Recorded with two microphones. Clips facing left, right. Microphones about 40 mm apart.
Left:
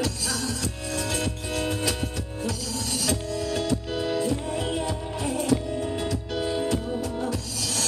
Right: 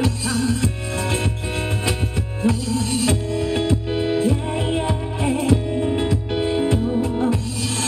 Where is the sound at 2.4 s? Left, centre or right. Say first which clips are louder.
Right 11 dB; right.